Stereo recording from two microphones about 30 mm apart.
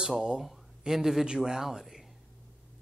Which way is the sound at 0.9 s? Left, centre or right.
Centre.